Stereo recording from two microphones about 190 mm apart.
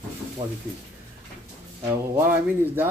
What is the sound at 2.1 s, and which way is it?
Speech, 10° right (ahead or behind).